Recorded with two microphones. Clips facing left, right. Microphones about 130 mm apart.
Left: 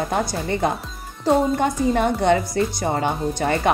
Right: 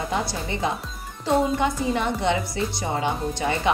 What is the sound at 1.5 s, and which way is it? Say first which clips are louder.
A woman's voice: left 4 dB; 50° left (ahead or behind).